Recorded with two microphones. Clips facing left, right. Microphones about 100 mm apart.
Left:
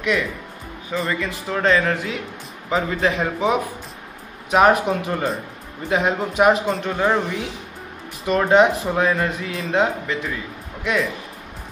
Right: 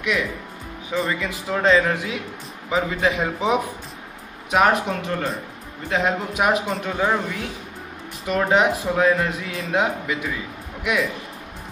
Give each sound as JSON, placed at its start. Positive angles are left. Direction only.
{"t": 0.9, "sound": "speech", "side_deg": -5}
{"t": 4.5, "sound": "speech", "side_deg": 0}
{"t": 8.3, "sound": "speech", "side_deg": -5}